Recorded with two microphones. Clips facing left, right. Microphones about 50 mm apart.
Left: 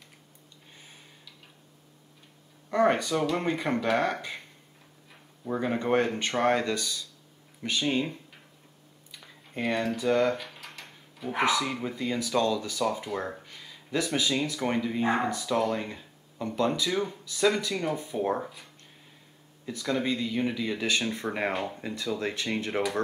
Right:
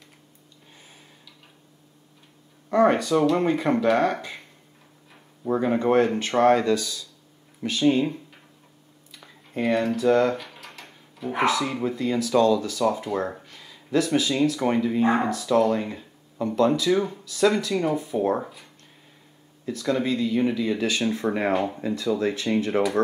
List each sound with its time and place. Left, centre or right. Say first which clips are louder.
0.7 s a sound: right 1 dB; centre
2.7 s speech: right 5 dB; centre
5.5 s speech: right 6 dB; centre
19.8 s speech: right 5 dB; centre